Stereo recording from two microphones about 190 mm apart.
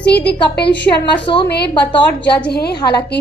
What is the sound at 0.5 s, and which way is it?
A woman's voice, 60° left (ahead or behind).